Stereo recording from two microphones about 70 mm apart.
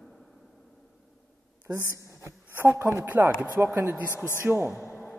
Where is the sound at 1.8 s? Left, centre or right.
Left.